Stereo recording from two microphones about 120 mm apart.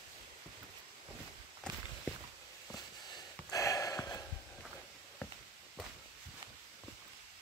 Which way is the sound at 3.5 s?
30° left (ahead or behind).